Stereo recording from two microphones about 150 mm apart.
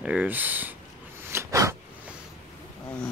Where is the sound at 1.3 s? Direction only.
20° right (ahead or behind).